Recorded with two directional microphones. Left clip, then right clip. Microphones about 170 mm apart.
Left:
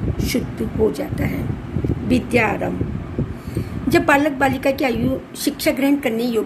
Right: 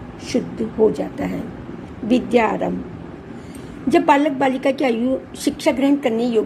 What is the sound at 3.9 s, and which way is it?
A woman's voice, 20° right (ahead or behind).